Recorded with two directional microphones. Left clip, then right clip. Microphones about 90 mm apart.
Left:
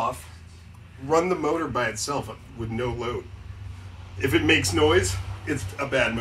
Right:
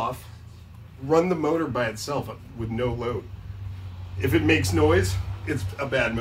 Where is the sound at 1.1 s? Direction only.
10° right (ahead or behind).